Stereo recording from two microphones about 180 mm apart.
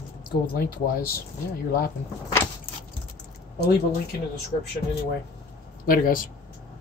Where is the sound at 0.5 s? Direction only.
55° left (ahead or behind).